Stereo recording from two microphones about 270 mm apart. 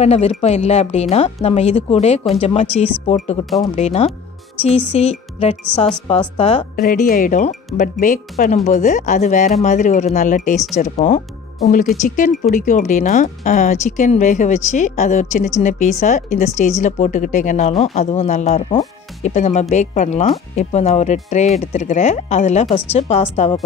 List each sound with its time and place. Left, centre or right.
0.0 s speech: left